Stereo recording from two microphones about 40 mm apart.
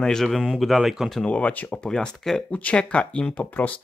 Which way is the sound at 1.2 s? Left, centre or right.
Left.